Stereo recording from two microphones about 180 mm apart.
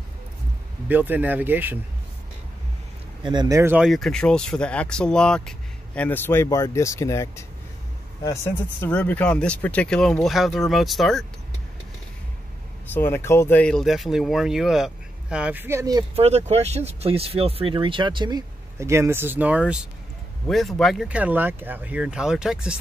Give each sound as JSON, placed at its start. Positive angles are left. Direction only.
{"t": 0.8, "sound": "speech", "side_deg": -10}
{"t": 3.3, "sound": "speech", "side_deg": -20}
{"t": 12.9, "sound": "speech", "side_deg": 15}
{"t": 16.2, "sound": "speech", "side_deg": -35}